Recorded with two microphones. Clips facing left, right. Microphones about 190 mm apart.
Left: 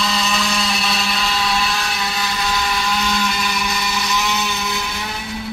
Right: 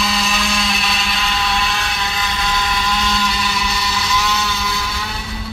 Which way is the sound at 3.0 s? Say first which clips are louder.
Even; 10° left (ahead or behind).